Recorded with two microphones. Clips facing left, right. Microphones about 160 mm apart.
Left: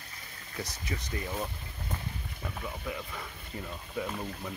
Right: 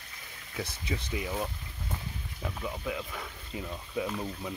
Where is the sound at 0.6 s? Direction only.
10° right (ahead or behind).